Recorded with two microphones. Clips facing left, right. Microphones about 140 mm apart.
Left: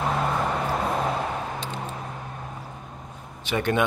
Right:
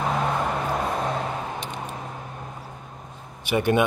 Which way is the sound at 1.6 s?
15° right (ahead or behind).